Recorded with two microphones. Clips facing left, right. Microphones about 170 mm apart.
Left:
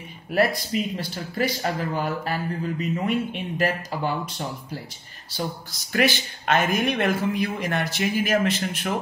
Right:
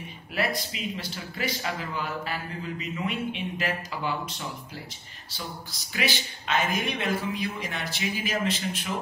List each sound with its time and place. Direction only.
0.3 s speech: 45° left (ahead or behind)
5.9 s speech: 55° left (ahead or behind)